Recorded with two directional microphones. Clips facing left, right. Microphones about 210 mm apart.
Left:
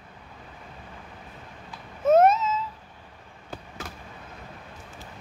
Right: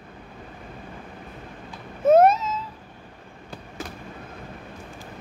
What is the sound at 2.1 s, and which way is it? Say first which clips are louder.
Cat: right 2 dB; 35° right (ahead or behind).